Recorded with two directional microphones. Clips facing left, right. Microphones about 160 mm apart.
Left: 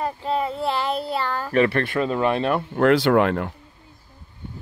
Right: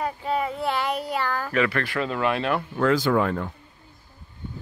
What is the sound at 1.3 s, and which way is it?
Speech, 30° left (ahead or behind).